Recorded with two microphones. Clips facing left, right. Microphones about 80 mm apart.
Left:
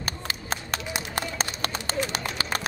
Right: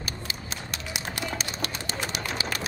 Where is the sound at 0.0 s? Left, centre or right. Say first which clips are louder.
Left 3 dB; left.